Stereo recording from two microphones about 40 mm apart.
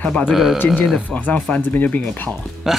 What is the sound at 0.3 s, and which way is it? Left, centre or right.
Speech, centre.